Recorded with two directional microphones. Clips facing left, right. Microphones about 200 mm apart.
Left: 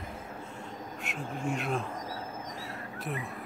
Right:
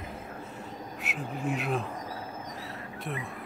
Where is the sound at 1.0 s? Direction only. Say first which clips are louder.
Right 1 dB; 5° right (ahead or behind).